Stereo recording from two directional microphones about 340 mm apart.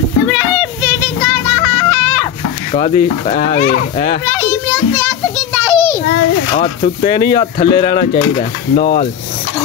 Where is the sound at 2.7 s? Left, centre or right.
Centre.